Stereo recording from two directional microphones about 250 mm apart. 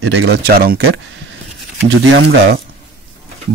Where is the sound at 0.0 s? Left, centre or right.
Right.